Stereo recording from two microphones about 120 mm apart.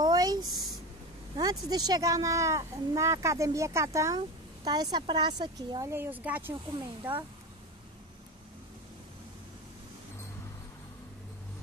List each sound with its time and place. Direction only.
0.0 s a sound: 35° right (ahead or behind)
1.4 s a woman's voice: 35° right (ahead or behind)
5.9 s speech: 15° right (ahead or behind)